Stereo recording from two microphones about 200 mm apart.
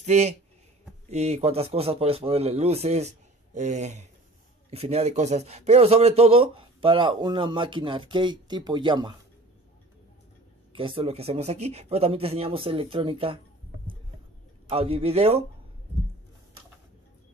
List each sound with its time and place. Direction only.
0.0 s a man's voice: 35° right (ahead or behind)
10.7 s speech: 25° right (ahead or behind)
14.7 s a man's voice: 30° right (ahead or behind)